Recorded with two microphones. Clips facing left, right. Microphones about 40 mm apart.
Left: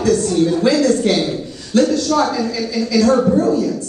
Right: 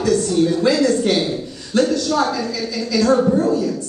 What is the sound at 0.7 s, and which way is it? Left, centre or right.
A man's voice, centre.